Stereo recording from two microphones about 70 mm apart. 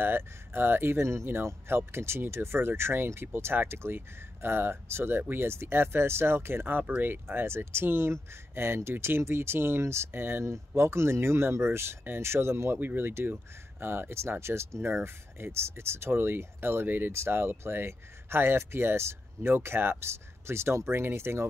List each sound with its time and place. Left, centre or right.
0.0 s speech: right
12.7 s speech: right